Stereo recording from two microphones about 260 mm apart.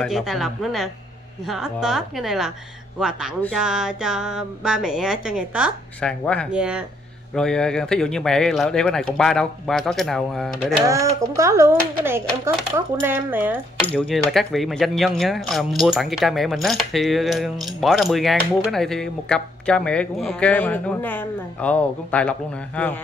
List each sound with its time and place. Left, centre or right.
0.0 s speech: centre
10.9 s speech: centre